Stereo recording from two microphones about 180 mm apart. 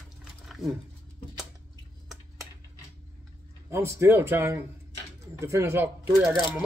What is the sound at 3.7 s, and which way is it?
Speech, 15° right (ahead or behind).